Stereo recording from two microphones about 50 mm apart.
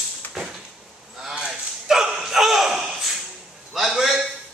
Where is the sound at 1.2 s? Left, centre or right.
Centre.